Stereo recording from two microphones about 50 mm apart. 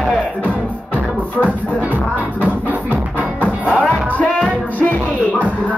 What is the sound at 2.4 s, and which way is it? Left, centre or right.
Music, right.